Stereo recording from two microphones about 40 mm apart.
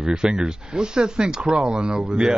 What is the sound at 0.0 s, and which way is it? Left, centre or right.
Speech, centre.